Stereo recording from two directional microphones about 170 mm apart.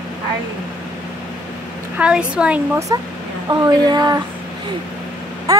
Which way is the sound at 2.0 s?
5° right (ahead or behind).